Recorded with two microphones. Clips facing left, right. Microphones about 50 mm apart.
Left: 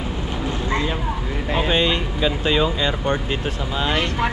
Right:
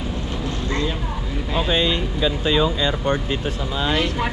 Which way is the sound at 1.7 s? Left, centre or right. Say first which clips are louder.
Even; left.